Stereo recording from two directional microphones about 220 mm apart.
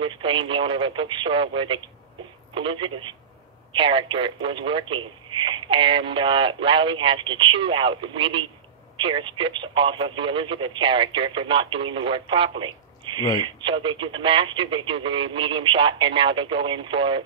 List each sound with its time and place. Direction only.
0.0 s speech: 25° right (ahead or behind)